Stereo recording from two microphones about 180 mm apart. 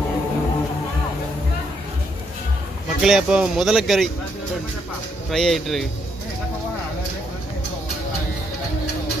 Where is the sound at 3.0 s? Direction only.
5° right (ahead or behind).